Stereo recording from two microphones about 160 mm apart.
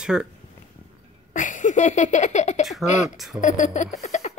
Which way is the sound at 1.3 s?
50° left (ahead or behind).